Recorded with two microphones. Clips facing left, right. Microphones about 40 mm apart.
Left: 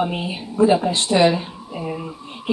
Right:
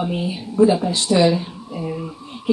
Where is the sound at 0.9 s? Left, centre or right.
Left.